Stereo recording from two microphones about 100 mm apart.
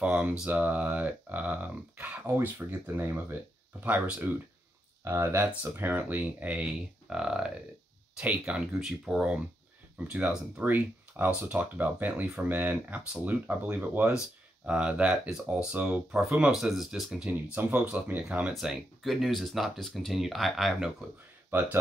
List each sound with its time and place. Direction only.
0.0 s speech: 15° right (ahead or behind)
17.3 s speech: 15° right (ahead or behind)
18.5 s speech: centre (ahead or behind)
21.5 s speech: 20° right (ahead or behind)